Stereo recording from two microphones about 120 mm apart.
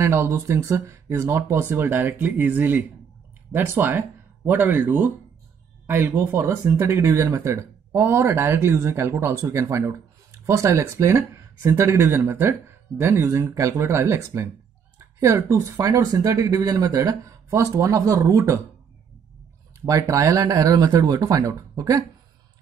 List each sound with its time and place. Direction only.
0.0 s speech: 20° right (ahead or behind)
19.9 s speech: 25° right (ahead or behind)